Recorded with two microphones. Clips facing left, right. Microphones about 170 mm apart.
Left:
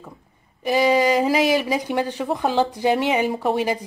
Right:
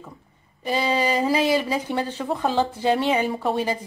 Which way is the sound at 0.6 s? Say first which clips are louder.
Left 5 dB; 10° left (ahead or behind).